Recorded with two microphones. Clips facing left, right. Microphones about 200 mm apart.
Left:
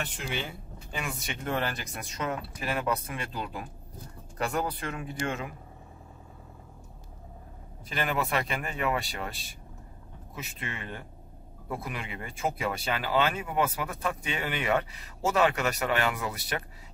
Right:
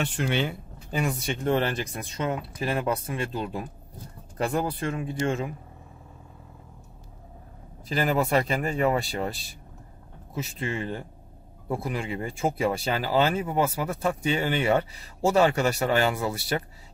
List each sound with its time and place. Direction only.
0.2 s speech: 70° right (ahead or behind)
0.9 s speech: 35° right (ahead or behind)
7.9 s speech: 35° right (ahead or behind)